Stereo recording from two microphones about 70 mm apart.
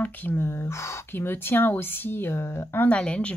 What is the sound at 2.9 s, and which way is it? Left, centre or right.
Speech, centre.